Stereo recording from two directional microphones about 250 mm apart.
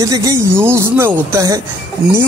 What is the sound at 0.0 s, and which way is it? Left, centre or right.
A man's voice, centre.